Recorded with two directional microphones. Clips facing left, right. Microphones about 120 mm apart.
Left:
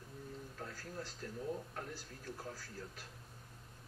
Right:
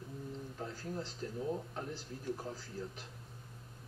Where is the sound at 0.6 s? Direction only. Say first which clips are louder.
Right 5 dB; 20° right (ahead or behind).